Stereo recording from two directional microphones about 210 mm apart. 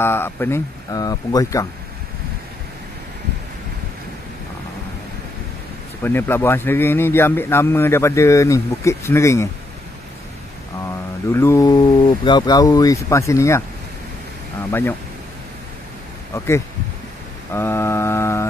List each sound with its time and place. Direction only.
0.0 s speech: 10° left (ahead or behind)
6.0 s speech: 10° left (ahead or behind)
11.3 s speech: 15° left (ahead or behind)
14.7 s speech: 10° left (ahead or behind)
16.3 s speech: 15° left (ahead or behind)
17.5 s mantra: 10° left (ahead or behind)